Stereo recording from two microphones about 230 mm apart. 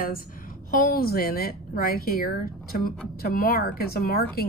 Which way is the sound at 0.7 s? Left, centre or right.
Left.